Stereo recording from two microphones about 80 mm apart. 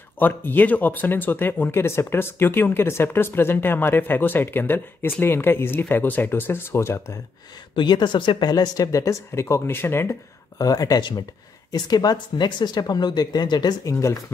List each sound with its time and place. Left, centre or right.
0.2 s speech: left
7.7 s speech: left
10.6 s speech: left
13.8 s speech: left